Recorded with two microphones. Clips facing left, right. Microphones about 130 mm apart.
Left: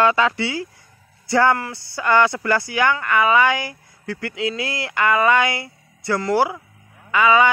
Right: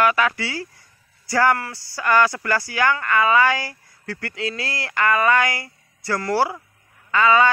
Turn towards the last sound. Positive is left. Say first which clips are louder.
# left 1 dB
turn(degrees=15)  # may be behind; listen again after turning